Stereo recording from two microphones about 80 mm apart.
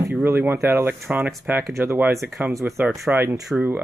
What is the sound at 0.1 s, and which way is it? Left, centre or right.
Speech, right.